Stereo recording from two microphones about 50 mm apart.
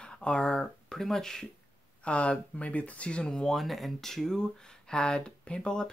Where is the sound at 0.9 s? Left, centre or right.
Centre.